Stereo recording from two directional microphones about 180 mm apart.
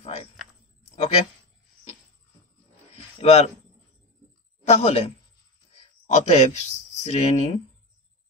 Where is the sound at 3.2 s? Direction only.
35° left (ahead or behind).